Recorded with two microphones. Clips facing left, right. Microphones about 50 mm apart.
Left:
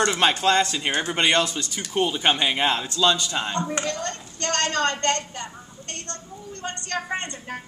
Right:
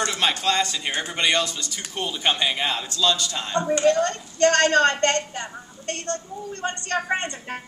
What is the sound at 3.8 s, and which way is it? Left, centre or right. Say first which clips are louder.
A woman's voice: right 10 dB; right.